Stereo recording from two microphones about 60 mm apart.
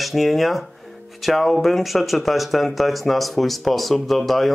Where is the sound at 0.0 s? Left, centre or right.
Centre.